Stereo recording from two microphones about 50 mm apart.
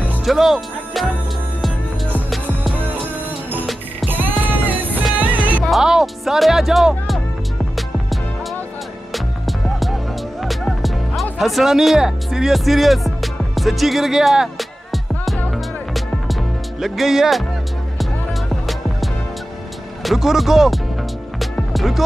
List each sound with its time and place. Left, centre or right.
0.2 s speech: centre
4.1 s music: right
5.4 s music: left
5.7 s speech: centre
9.1 s music: centre
11.3 s speech: centre
12.3 s music: centre
16.8 s speech: centre
20.0 s speech: centre